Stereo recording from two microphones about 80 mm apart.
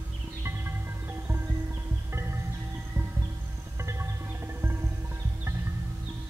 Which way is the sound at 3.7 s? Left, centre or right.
Right.